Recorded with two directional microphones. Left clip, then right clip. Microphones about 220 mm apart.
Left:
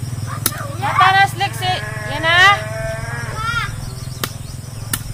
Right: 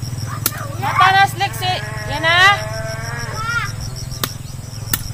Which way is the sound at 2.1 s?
15° right (ahead or behind).